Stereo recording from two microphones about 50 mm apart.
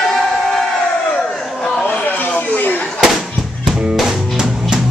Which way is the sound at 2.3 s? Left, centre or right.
Left.